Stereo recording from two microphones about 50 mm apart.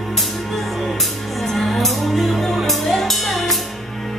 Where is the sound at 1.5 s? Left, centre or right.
Centre.